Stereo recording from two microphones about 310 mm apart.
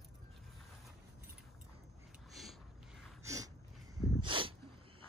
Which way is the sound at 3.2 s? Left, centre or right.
Centre.